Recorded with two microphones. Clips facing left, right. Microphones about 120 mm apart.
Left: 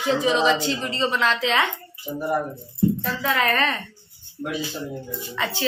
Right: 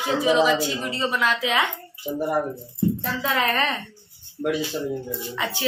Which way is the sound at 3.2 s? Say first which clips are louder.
Left 1 dB; 15° right (ahead or behind).